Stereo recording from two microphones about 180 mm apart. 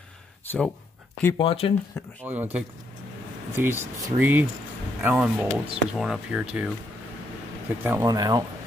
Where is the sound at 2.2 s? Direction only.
10° right (ahead or behind).